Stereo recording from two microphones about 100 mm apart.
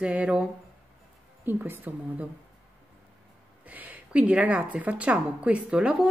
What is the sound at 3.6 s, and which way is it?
A woman's voice, 15° right (ahead or behind).